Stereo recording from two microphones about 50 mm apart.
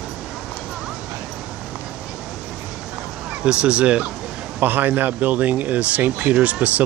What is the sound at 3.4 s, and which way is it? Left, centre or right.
Speech, right.